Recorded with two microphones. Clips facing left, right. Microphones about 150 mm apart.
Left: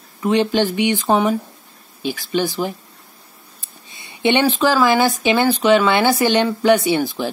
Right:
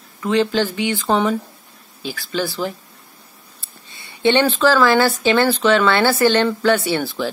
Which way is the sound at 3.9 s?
20° left (ahead or behind).